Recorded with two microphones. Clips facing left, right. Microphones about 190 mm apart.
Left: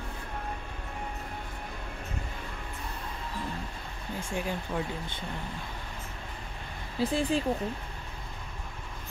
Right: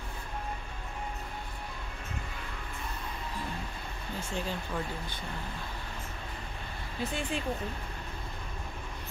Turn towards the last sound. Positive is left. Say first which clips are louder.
# left 6 dB
turn(degrees=35)  # may be behind; listen again after turning